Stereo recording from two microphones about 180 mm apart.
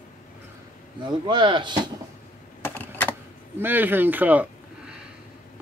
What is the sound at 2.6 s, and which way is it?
Typewriter, 10° left (ahead or behind).